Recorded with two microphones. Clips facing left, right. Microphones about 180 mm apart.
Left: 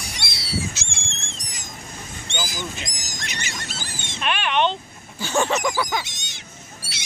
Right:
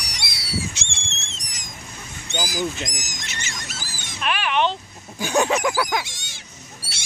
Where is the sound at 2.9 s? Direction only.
20° right (ahead or behind).